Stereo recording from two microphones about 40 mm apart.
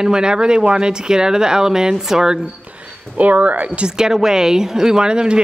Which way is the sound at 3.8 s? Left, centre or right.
Centre.